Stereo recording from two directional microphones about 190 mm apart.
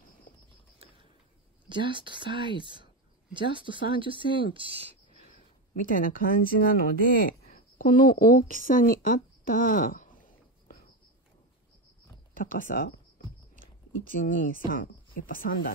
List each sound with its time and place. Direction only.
1.7 s speech: 25° right (ahead or behind)
5.8 s a woman's voice: 45° left (ahead or behind)
12.4 s speech: 45° left (ahead or behind)
14.1 s speech: 45° left (ahead or behind)